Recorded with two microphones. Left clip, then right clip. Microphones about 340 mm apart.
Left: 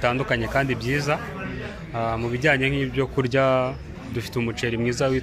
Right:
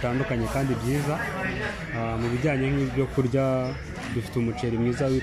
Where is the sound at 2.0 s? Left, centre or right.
Left.